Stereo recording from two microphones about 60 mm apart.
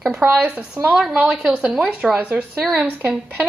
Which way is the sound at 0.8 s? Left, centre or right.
Right.